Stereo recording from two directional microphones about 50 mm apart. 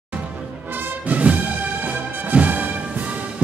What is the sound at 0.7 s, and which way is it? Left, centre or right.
Music, right.